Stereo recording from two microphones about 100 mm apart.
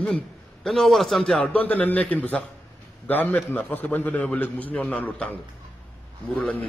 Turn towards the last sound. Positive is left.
turn(degrees=15)  # may be behind; listen again after turning